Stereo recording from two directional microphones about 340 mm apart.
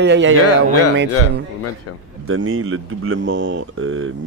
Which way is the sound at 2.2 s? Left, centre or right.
Right.